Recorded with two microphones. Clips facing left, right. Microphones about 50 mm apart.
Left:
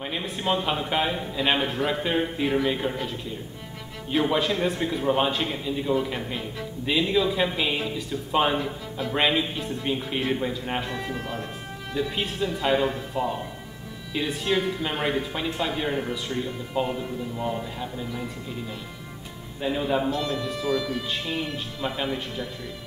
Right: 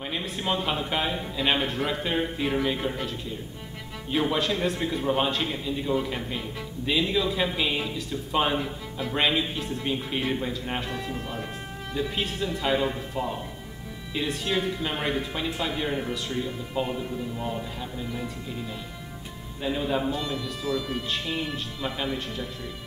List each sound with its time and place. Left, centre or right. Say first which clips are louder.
0.0 s speech: left 2 dB; centre
19.6 s speech: left 2 dB; centre
20.1 s speech: left 3 dB; centre
20.3 s speech: left 3 dB; centre